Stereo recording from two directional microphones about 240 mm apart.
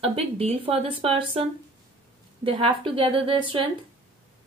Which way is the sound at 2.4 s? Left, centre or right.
Right.